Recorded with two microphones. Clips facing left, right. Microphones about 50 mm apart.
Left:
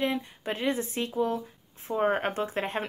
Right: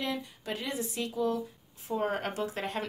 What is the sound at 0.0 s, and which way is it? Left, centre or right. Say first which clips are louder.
A woman's voice: left 5 dB; left.